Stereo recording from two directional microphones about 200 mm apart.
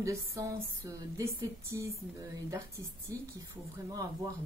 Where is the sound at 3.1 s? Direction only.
15° right (ahead or behind).